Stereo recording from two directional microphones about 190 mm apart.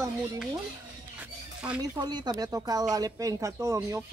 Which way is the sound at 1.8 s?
20° right (ahead or behind).